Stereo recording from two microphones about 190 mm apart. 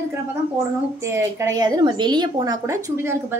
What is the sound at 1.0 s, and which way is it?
A woman's voice, 15° right (ahead or behind).